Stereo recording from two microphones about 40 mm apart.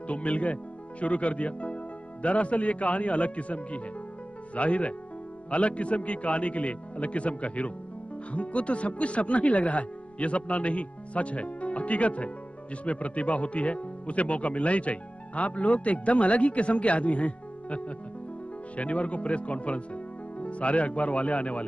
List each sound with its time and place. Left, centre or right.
0.1 s speech: left